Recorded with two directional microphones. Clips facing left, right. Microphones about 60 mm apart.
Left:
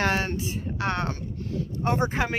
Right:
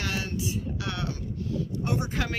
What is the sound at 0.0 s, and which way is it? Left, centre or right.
A woman's voice, left.